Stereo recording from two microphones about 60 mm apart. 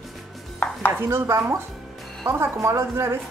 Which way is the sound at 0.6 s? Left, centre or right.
Left.